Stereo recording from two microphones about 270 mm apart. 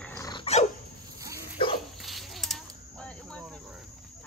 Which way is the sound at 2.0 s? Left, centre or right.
Centre.